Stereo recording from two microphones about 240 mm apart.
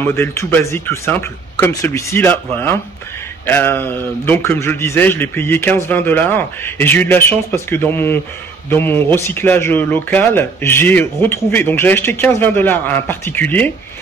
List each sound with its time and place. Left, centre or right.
0.0 s speech: centre